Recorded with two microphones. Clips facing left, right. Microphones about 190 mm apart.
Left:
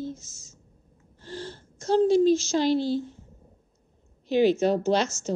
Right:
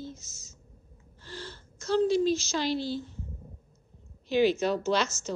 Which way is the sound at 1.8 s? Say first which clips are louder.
Left 5 dB; 50° left (ahead or behind).